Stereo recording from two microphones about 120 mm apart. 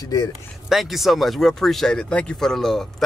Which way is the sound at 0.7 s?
Centre (ahead or behind).